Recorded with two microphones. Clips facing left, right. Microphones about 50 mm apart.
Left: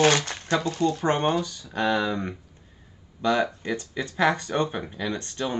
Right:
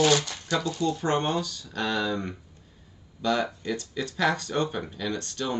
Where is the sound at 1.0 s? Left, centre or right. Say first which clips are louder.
Left 3 dB; left.